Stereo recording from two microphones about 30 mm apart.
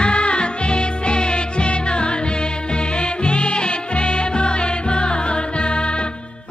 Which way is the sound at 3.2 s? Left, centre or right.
Left.